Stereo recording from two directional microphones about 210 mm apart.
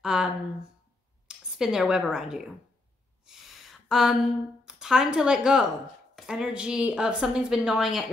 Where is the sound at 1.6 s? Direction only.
5° right (ahead or behind).